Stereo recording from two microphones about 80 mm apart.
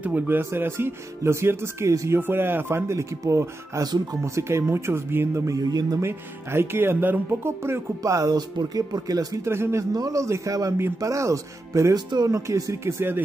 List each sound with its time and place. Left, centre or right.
0.0 s speech: right
3.8 s speech: right
4.2 s speech: right
5.5 s speech: right
5.9 s speech: right
9.4 s speech: right
9.9 s a man's voice: right